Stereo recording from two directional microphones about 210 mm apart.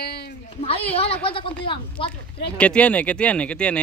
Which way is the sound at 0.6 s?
30° left (ahead or behind).